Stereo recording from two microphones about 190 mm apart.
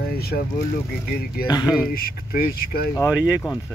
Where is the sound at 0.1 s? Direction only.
55° left (ahead or behind).